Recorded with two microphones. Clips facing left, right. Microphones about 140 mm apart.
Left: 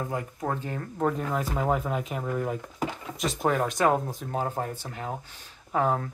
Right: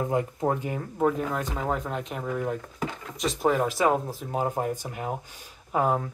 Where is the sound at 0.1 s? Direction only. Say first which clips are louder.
Right 5 dB; 20° right (ahead or behind).